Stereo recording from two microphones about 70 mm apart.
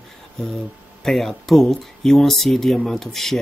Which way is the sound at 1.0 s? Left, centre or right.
Centre.